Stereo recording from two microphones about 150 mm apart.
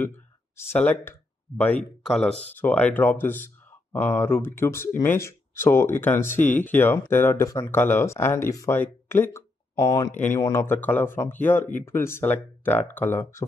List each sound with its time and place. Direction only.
0.6 s speech: 15° left (ahead or behind)